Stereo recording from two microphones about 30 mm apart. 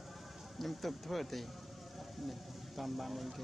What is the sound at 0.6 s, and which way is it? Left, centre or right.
Speech, centre.